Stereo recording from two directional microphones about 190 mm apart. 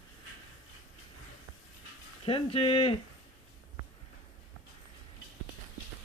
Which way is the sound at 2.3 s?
30° left (ahead or behind).